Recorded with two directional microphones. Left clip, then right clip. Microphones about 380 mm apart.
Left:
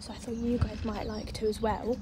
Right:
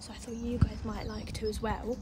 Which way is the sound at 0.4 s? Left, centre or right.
Centre.